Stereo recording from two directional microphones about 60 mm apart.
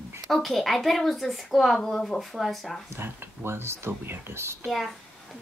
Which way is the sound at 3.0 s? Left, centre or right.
Right.